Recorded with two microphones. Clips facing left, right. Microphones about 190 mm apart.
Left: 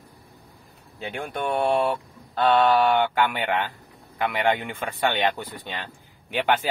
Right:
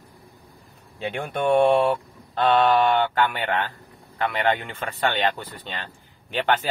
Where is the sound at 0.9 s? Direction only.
Centre (ahead or behind).